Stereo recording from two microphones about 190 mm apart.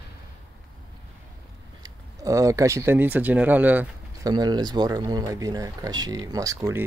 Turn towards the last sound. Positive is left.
turn(degrees=-15)  # may be behind; listen again after turning